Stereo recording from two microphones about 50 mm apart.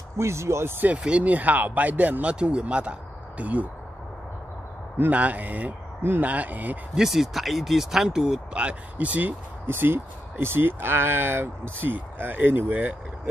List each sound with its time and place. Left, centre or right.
0.2 s speech: right
0.7 s speech: right
4.9 s speech: right
7.0 s speech: centre
8.6 s speech: right
9.7 s speech: right